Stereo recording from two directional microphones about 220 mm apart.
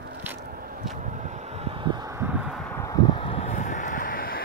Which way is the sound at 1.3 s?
30° right (ahead or behind).